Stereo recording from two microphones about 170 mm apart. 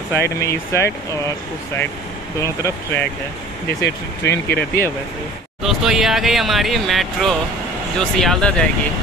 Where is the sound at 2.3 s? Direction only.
20° left (ahead or behind).